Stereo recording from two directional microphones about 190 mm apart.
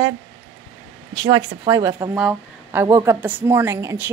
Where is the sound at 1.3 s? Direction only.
20° right (ahead or behind).